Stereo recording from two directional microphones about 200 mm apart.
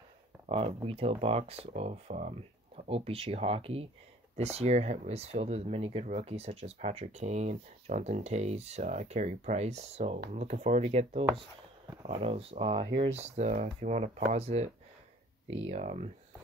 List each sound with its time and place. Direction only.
0.5 s speech: 25° right (ahead or behind)